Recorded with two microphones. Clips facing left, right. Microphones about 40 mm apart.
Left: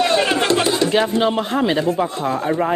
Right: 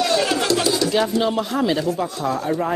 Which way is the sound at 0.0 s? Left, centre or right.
Left.